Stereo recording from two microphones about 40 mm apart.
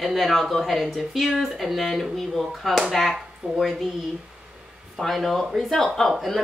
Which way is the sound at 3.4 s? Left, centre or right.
Right.